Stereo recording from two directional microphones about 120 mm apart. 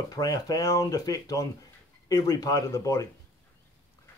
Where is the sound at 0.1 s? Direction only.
30° left (ahead or behind).